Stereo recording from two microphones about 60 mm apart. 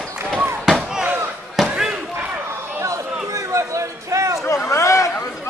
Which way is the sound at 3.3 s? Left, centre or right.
Right.